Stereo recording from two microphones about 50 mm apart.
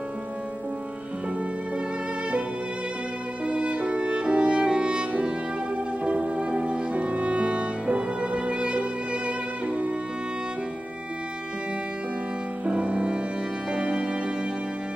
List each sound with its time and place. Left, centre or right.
3.4 s music: right
12.6 s music: right